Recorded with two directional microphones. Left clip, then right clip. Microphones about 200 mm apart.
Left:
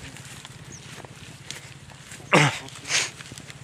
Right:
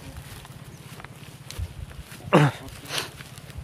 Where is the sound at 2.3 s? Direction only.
20° right (ahead or behind).